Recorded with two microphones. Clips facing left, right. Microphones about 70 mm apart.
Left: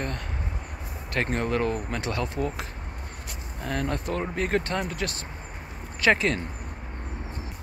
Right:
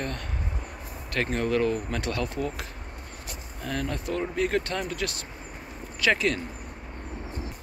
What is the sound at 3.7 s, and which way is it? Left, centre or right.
Speech, left.